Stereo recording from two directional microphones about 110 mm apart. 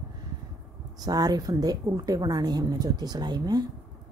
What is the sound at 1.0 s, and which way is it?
A woman's voice, 35° right (ahead or behind).